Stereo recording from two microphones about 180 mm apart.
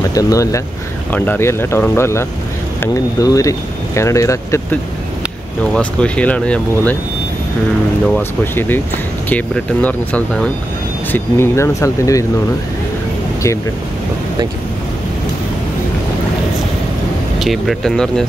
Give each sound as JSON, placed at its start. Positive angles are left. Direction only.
{"t": 0.1, "sound": "speech", "side_deg": 20}
{"t": 5.8, "sound": "speech", "side_deg": 5}
{"t": 8.2, "sound": "speech", "side_deg": 10}
{"t": 17.4, "sound": "speech", "side_deg": 0}